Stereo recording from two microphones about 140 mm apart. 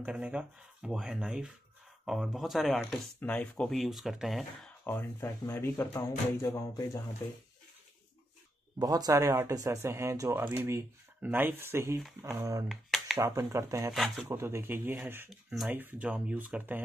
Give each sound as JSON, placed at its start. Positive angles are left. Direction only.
{"t": 0.0, "sound": "speech", "side_deg": -10}
{"t": 4.8, "sound": "speech", "side_deg": 15}
{"t": 8.7, "sound": "speech", "side_deg": -25}
{"t": 12.6, "sound": "a sound", "side_deg": 0}
{"t": 13.2, "sound": "speech", "side_deg": -20}
{"t": 13.9, "sound": "speech", "side_deg": 0}
{"t": 14.2, "sound": "speech", "side_deg": -20}
{"t": 15.2, "sound": "speech", "side_deg": 0}
{"t": 15.7, "sound": "speech", "side_deg": -15}